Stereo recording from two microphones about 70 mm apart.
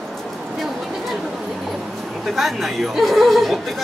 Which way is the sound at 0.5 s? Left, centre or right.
Centre.